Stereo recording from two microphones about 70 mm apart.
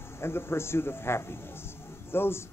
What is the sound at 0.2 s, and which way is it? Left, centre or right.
Speech, left.